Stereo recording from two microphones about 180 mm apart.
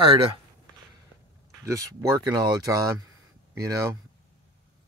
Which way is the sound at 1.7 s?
15° right (ahead or behind).